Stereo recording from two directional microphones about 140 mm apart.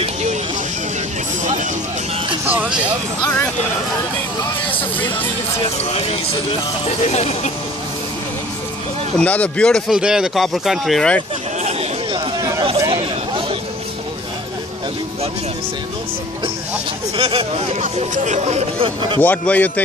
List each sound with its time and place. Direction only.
0.0 s a sound: 55° right (ahead or behind)
1.4 s music: 60° right (ahead or behind)
2.4 s speech: 10° right (ahead or behind)
3.3 s speech: 10° left (ahead or behind)
5.6 s speech: 45° left (ahead or behind)
9.2 s speech: 10° left (ahead or behind)
11.6 s a sound: 45° right (ahead or behind)
12.4 s chatter: 25° right (ahead or behind)
12.9 s chatter: 40° right (ahead or behind)
17.2 s speech: 45° right (ahead or behind)
18.9 s a man's voice: 35° right (ahead or behind)
19.2 s speech: 10° left (ahead or behind)